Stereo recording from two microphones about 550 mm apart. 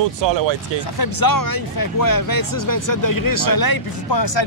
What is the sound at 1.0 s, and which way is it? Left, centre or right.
Speech, left.